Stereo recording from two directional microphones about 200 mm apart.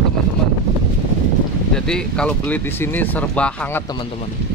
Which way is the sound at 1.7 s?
5° left (ahead or behind).